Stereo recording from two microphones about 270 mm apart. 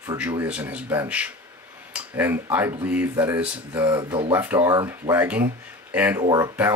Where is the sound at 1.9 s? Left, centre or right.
Centre.